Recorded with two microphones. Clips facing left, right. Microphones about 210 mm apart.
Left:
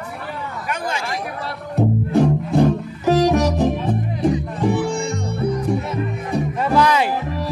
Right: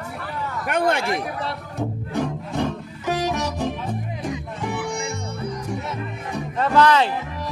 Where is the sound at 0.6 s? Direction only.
60° right (ahead or behind).